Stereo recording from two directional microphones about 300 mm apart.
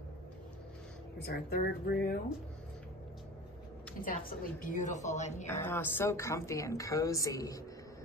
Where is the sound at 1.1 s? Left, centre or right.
Left.